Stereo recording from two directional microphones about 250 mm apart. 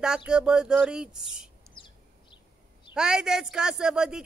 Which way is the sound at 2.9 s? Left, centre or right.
Centre.